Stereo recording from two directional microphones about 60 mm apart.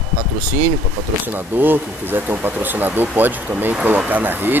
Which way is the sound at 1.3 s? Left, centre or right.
Right.